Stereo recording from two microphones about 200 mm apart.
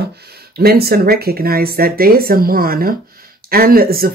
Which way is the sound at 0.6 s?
50° right (ahead or behind).